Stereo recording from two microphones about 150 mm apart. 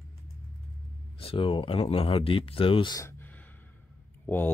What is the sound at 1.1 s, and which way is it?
Speech, 35° left (ahead or behind).